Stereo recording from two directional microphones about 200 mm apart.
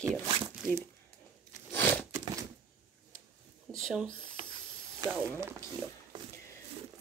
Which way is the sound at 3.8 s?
Centre (ahead or behind).